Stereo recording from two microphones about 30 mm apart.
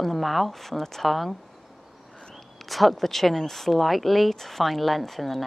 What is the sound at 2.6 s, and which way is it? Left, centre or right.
A woman's voice, centre.